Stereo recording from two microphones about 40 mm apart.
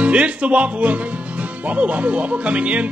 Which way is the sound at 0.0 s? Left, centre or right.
Right.